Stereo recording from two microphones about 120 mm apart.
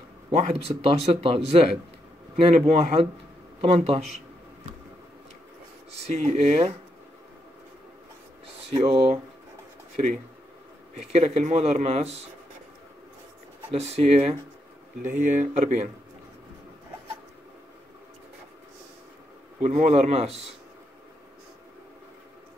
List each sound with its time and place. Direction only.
0.3 s speech: 60° right (ahead or behind)
6.0 s speech: 65° right (ahead or behind)
8.6 s speech: 55° right (ahead or behind)
9.9 s speech: 70° right (ahead or behind)
13.7 s speech: 60° right (ahead or behind)
15.1 s speech: 90° right
19.8 s speech: 65° right (ahead or behind)